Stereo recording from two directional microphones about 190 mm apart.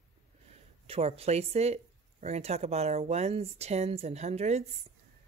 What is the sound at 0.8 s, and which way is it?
Speech, 30° right (ahead or behind).